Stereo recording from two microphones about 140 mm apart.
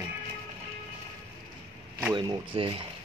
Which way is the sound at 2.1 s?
35° right (ahead or behind).